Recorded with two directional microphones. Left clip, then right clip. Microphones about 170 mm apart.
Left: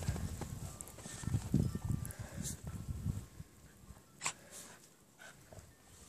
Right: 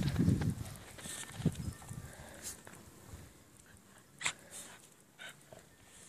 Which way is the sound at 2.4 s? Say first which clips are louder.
Left 2 dB; 5° left (ahead or behind).